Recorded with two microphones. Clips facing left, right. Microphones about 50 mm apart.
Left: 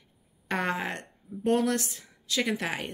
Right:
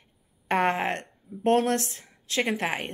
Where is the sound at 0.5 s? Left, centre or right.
Right.